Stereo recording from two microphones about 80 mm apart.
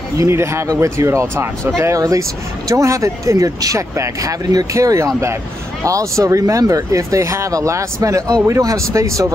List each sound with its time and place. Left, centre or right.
0.2 s speech: right
4.7 s speech: right